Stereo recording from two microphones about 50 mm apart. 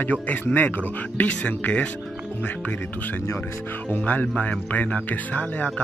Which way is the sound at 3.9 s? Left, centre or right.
Left.